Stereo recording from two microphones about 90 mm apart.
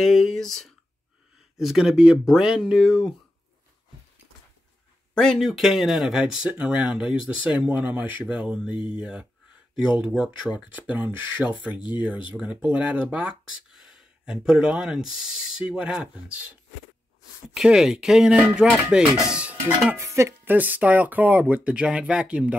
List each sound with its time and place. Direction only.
0.0 s speech: centre (ahead or behind)
5.1 s speech: 5° left (ahead or behind)
10.7 s speech: 20° right (ahead or behind)
17.6 s speech: 5° right (ahead or behind)
20.0 s speech: 35° right (ahead or behind)
20.5 s speech: 20° right (ahead or behind)